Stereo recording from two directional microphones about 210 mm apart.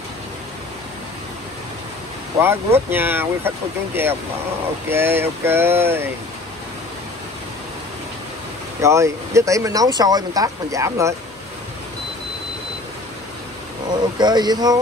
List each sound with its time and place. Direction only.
2.4 s speech: 10° right (ahead or behind)
8.8 s speech: 15° right (ahead or behind)
13.9 s speech: 20° right (ahead or behind)